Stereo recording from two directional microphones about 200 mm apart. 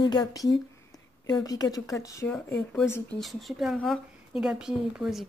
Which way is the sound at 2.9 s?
5° left (ahead or behind).